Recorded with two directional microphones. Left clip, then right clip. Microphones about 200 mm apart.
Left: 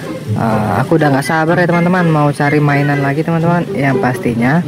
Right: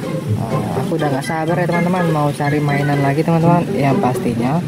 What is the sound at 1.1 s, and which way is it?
Speech, 20° left (ahead or behind).